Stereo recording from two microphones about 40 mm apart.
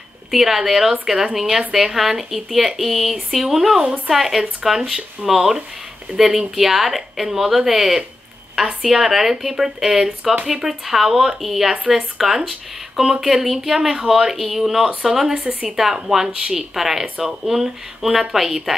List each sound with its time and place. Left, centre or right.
0.3 s speech: centre
9.0 s speech: centre
15.3 s speech: right
15.7 s speech: centre